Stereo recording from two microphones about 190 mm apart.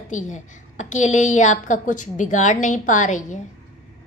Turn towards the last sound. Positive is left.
turn(degrees=40)  # may be behind; listen again after turning